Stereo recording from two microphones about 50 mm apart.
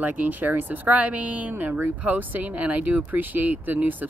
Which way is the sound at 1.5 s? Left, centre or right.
Right.